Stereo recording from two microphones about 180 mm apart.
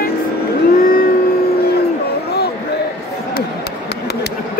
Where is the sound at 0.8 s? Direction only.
55° left (ahead or behind).